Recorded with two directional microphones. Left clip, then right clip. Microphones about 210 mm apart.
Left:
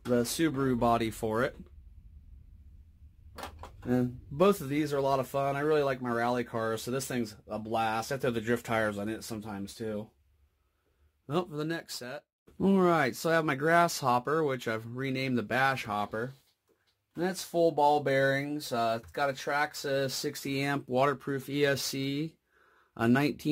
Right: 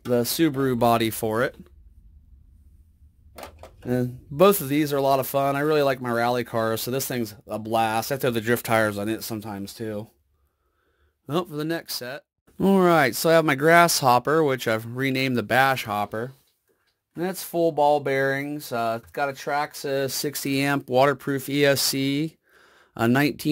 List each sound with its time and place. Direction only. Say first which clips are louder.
0.1 s speech: right 7 dB; 45° right (ahead or behind)
3.8 s speech: right 5 dB; 40° right (ahead or behind)
11.2 s speech: right 6 dB; 35° right (ahead or behind)
17.1 s speech: right 4 dB; 30° right (ahead or behind)